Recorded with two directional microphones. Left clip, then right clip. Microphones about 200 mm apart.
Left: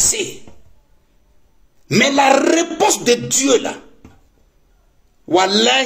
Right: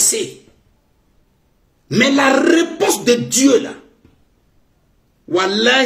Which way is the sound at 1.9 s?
15° right (ahead or behind).